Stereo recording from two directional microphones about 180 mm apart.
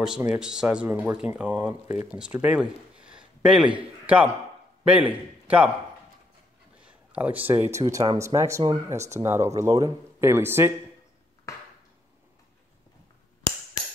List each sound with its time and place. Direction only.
0.3 s a man's voice: 5° right (ahead or behind)
6.8 s a sound: 5° right (ahead or behind)
7.4 s speech: 10° right (ahead or behind)
8.9 s speech: 40° right (ahead or behind)
9.2 s speech: 15° right (ahead or behind)
11.5 s a sound: 15° left (ahead or behind)